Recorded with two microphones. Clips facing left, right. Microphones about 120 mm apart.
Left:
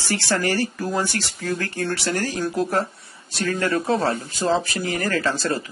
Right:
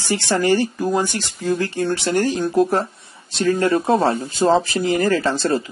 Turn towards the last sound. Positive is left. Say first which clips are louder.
# right 5 dB
turn(degrees=-25)  # may be behind; listen again after turning